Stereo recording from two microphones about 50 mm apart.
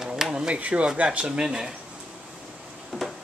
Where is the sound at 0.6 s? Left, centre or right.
Right.